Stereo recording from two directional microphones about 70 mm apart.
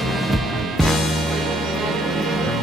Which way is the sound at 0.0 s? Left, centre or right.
Centre.